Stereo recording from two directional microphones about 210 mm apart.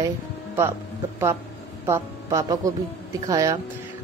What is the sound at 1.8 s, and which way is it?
A woman's voice, 15° right (ahead or behind).